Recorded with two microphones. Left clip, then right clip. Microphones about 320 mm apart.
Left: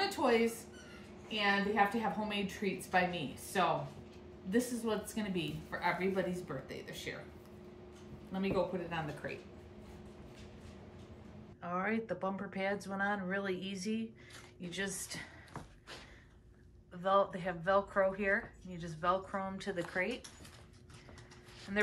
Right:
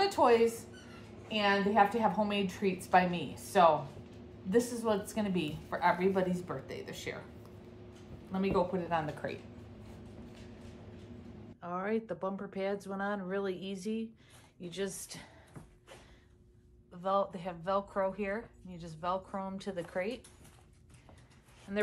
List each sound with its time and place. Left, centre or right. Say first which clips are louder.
0.0 s a sound: right 5 dB; centre
2.0 s a woman's voice: right 6 dB; centre
8.3 s a woman's voice: right 3 dB; centre
11.6 s a woman's voice: right 1 dB; centre
17.0 s a woman's voice: left 1 dB; centre
21.7 s a woman's voice: even; centre